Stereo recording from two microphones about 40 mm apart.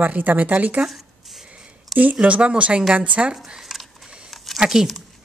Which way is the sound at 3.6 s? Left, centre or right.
Centre.